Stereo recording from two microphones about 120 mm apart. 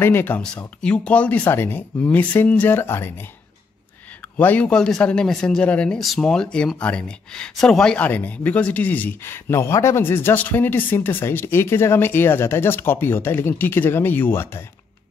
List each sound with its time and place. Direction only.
0.0 s speech: 15° left (ahead or behind)
4.4 s speech: 10° left (ahead or behind)